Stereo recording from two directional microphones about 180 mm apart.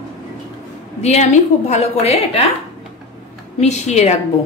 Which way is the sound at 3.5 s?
40° left (ahead or behind).